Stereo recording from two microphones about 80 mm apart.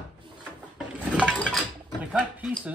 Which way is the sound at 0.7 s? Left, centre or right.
Centre.